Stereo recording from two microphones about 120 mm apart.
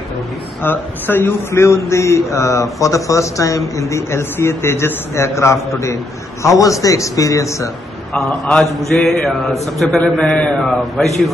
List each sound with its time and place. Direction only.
0.6 s a man's voice: 15° left (ahead or behind)
8.1 s a man's voice: 10° left (ahead or behind)